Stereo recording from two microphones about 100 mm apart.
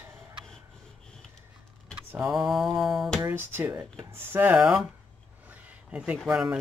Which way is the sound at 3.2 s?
20° right (ahead or behind).